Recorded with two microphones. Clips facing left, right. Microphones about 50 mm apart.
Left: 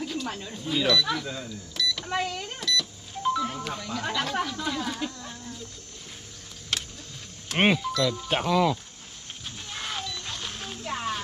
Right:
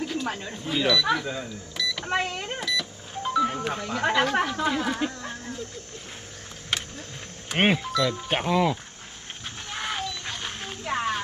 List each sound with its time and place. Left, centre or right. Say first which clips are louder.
0.0 s a sound: right 3 dB; centre
0.7 s speech: right 2 dB; centre
1.8 s power windows: even; centre
2.0 s speech: right 2 dB; right
2.6 s speech: left 4 dB; centre; by 5.6 s right
6.7 s vehicle: right 2 dB; centre
7.4 s speech: even; centre
9.7 s music: right 4 dB; right